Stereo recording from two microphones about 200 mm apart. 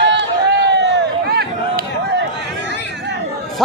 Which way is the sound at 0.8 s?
55° right (ahead or behind).